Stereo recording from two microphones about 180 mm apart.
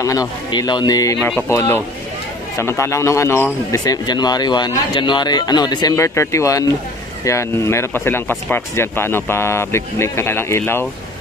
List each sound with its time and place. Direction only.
0.5 s speech: 25° left (ahead or behind)